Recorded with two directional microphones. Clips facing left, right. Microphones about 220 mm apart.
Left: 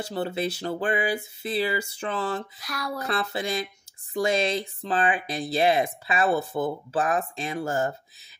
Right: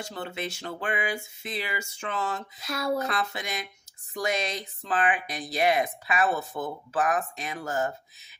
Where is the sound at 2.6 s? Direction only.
25° right (ahead or behind).